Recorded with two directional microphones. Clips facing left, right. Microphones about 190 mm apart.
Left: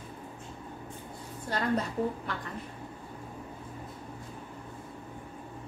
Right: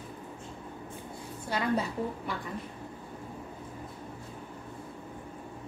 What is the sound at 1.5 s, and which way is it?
Speech, 10° right (ahead or behind).